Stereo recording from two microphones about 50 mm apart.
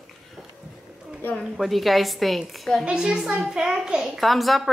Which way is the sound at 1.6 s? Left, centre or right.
Centre.